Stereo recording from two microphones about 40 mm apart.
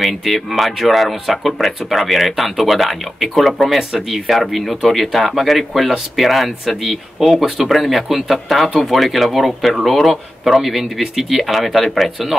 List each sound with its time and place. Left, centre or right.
0.0 s speech: centre